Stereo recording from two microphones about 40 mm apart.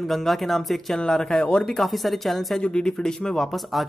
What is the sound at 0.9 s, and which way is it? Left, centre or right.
Speech, centre.